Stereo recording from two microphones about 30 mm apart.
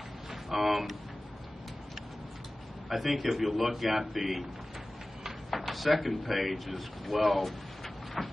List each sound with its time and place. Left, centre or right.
0.3 s speech: centre
2.9 s speech: centre
5.7 s speech: centre